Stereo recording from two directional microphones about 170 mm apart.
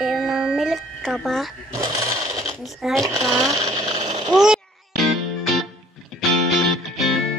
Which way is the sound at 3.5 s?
20° right (ahead or behind).